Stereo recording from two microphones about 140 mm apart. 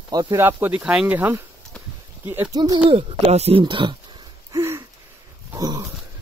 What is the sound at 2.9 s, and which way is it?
Speech, 50° right (ahead or behind).